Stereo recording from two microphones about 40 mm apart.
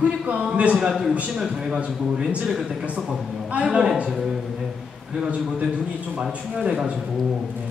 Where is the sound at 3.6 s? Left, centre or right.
Right.